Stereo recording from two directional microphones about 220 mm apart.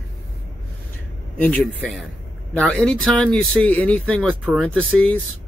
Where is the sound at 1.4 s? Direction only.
5° left (ahead or behind).